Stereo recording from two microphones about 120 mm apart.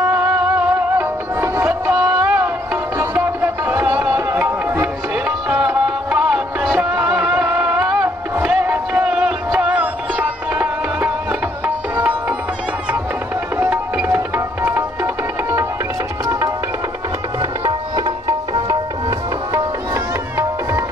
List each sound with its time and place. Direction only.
0.0 s music: 15° right (ahead or behind)
13.6 s music: 15° right (ahead or behind)
16.3 s music: 25° right (ahead or behind)
17.4 s music: 35° right (ahead or behind)